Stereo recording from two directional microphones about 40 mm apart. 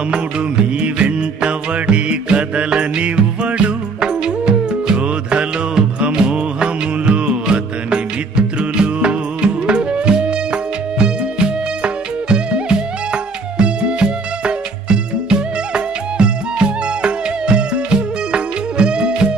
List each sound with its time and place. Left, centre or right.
0.1 s music: right